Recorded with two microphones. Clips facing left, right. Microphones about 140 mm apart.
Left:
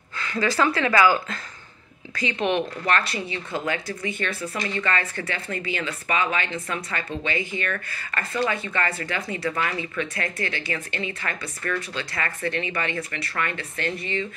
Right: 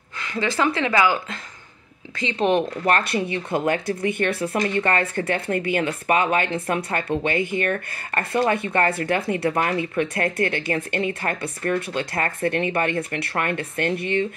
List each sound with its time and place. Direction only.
0.2 s speech: 20° right (ahead or behind)
2.1 s speech: 30° right (ahead or behind); by 14.2 s 60° right (ahead or behind)